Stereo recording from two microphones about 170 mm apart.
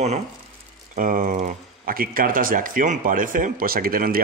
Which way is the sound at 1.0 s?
50° right (ahead or behind).